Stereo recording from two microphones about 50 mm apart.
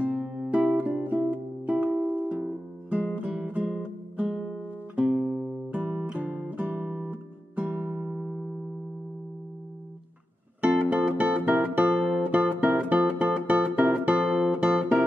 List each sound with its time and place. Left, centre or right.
0.4 s music: right
3.2 s guitar: right
5.2 s music: right
8.1 s music: centre
10.6 s music: right
14.1 s music: centre
14.4 s guitar: centre